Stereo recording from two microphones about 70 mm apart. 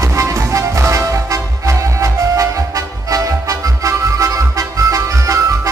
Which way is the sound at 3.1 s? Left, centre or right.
Right.